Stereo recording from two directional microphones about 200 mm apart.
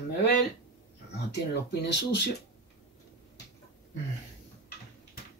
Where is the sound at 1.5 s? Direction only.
55° left (ahead or behind).